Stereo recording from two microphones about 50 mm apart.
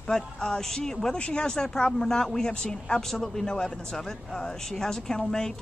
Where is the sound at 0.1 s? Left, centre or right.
Centre.